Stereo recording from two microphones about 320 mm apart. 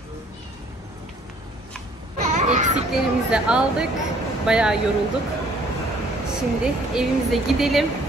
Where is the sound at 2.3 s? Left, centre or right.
Right.